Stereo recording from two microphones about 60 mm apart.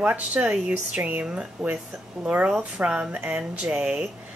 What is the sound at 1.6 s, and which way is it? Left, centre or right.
Speech, centre.